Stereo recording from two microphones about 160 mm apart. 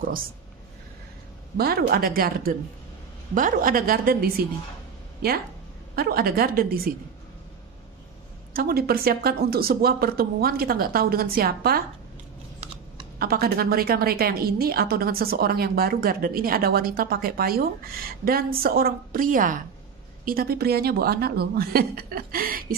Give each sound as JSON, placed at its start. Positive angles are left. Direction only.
{"t": 1.6, "sound": "a woman's voice", "side_deg": -70}
{"t": 5.9, "sound": "a woman's voice", "side_deg": -70}
{"t": 8.5, "sound": "a woman's voice", "side_deg": -70}
{"t": 13.2, "sound": "a woman's voice", "side_deg": -70}
{"t": 20.2, "sound": "a woman's voice", "side_deg": -70}